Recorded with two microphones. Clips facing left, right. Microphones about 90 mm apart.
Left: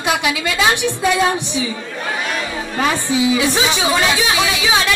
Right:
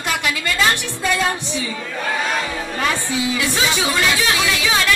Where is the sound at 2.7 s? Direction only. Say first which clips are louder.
Left 5 dB; 20° left (ahead or behind).